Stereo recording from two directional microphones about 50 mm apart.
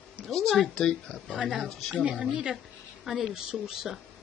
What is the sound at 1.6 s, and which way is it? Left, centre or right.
Speech, centre.